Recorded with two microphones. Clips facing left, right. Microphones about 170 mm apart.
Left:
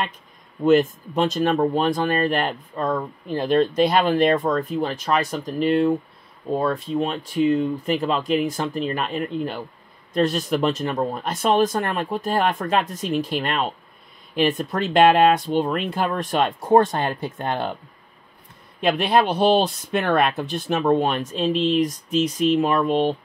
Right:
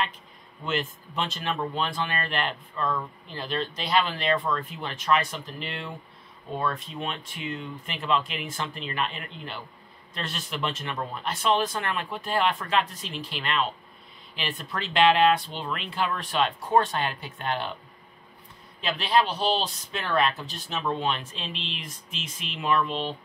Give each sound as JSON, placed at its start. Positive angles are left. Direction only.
{"t": 0.7, "sound": "speech", "side_deg": 45}
{"t": 18.8, "sound": "speech", "side_deg": 55}